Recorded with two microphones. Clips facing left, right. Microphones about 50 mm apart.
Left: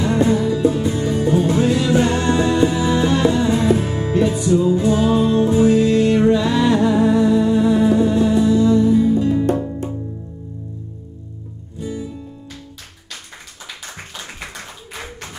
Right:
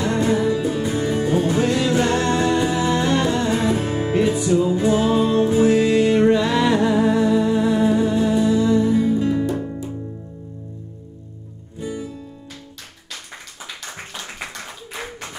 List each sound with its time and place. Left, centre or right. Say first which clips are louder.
0.0 s music: left 3 dB; centre
0.3 s music: left 2 dB; right
1.6 s music: left 2 dB; centre
2.5 s music: left 3 dB; centre
2.8 s music: left 3 dB; centre
3.9 s music: left 1 dB; centre
11.8 s music: left 1 dB; right